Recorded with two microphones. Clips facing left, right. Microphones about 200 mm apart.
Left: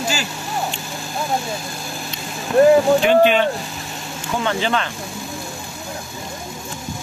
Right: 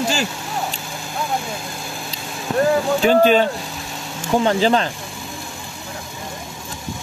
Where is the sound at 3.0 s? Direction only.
40° right (ahead or behind).